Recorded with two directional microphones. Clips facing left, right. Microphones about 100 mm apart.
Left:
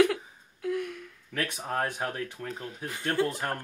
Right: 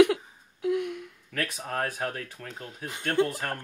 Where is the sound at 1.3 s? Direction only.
10° left (ahead or behind).